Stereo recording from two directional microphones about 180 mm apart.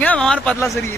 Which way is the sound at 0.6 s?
15° left (ahead or behind).